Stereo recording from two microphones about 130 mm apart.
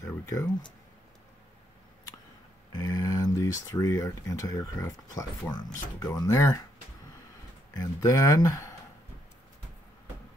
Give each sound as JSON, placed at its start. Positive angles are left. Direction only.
{"t": 0.0, "sound": "speech", "side_deg": 25}
{"t": 2.7, "sound": "speech", "side_deg": 30}
{"t": 8.0, "sound": "speech", "side_deg": 25}